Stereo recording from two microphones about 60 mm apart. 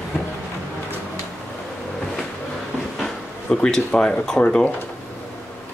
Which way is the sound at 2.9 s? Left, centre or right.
Centre.